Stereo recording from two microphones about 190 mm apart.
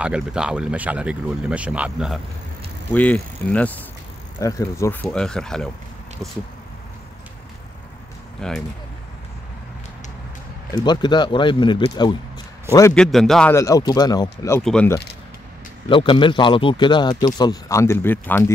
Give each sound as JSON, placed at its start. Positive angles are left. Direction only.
{"t": 0.0, "sound": "speech", "side_deg": -5}
{"t": 2.9, "sound": "speech", "side_deg": 10}
{"t": 5.1, "sound": "speech", "side_deg": 5}
{"t": 8.4, "sound": "speech", "side_deg": 5}
{"t": 10.8, "sound": "speech", "side_deg": 25}
{"t": 12.9, "sound": "speech", "side_deg": 0}
{"t": 13.5, "sound": "speech", "side_deg": 15}
{"t": 14.6, "sound": "speech", "side_deg": 5}
{"t": 15.9, "sound": "speech", "side_deg": 25}